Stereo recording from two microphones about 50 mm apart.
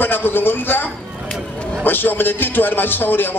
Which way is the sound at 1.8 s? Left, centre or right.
Left.